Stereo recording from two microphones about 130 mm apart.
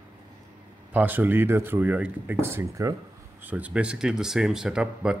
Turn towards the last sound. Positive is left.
turn(degrees=-5)  # may be behind; listen again after turning